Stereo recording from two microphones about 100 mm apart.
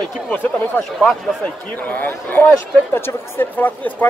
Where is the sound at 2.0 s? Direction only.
20° left (ahead or behind).